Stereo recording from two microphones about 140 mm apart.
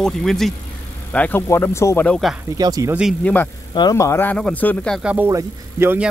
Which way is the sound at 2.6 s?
25° right (ahead or behind).